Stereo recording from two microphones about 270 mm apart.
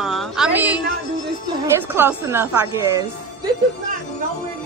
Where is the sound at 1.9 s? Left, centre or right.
Centre.